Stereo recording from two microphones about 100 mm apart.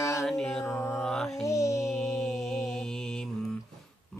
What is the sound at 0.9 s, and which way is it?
Mantra, 5° left (ahead or behind).